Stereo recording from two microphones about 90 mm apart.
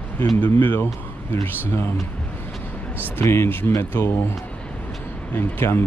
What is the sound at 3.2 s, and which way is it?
Speech, 30° left (ahead or behind).